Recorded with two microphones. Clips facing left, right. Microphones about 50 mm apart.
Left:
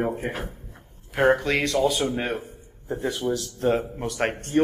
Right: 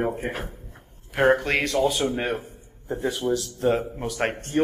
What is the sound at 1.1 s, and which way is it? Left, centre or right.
Speech, right.